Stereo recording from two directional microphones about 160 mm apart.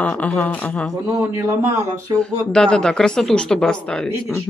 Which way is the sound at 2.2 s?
5° left (ahead or behind).